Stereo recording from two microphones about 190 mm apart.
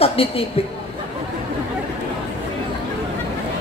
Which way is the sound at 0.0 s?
30° left (ahead or behind).